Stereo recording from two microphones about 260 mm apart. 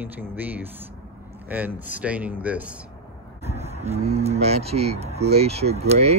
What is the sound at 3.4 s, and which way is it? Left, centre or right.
Speech, right.